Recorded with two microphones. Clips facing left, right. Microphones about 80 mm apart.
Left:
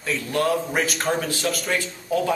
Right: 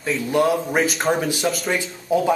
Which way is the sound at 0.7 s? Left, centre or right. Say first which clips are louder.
Right 4 dB; centre.